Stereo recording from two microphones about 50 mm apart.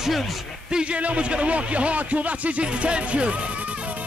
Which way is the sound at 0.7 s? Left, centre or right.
Right.